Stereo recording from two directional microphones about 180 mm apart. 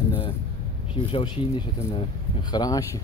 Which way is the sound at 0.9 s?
30° left (ahead or behind).